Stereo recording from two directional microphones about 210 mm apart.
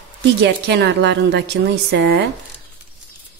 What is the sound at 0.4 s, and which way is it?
Speech, 55° right (ahead or behind).